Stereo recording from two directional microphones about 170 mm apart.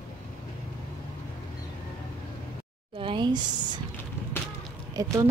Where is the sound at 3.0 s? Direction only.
30° right (ahead or behind).